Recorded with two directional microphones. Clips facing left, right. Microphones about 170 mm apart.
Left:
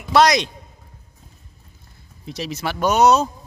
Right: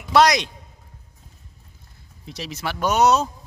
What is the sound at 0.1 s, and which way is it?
Speech, 10° right (ahead or behind).